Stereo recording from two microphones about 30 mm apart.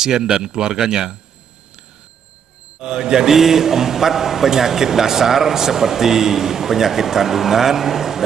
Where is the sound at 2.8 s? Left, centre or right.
Right.